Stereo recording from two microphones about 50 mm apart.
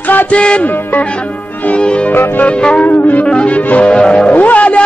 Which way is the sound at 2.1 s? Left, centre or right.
Left.